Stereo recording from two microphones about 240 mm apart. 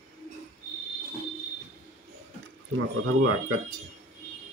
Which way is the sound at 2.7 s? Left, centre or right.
Right.